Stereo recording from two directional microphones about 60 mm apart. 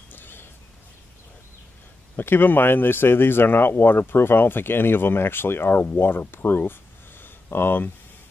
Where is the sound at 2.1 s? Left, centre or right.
Left.